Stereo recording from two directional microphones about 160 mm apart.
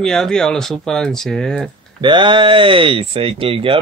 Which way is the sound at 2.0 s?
30° right (ahead or behind).